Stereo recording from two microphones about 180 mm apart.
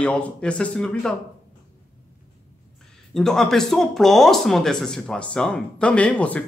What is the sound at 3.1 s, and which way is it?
Speech, 5° left (ahead or behind).